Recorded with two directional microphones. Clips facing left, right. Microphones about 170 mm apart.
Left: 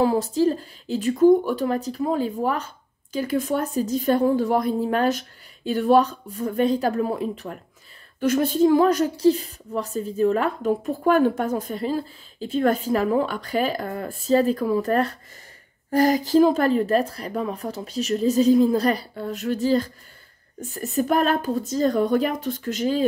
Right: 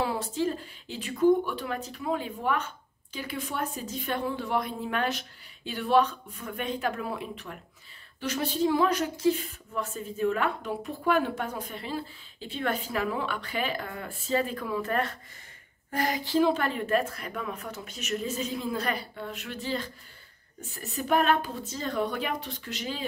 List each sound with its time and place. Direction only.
0.0 s speech: 40° left (ahead or behind)
8.2 s speech: 50° left (ahead or behind)